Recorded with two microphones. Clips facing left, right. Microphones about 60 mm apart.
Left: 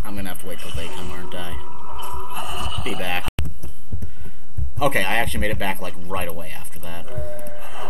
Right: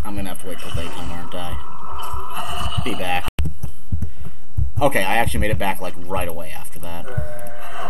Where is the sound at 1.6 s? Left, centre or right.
Centre.